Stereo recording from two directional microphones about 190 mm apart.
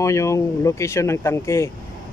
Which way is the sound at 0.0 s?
15° left (ahead or behind).